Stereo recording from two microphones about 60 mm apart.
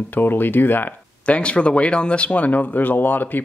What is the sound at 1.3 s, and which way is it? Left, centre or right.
Speech, centre.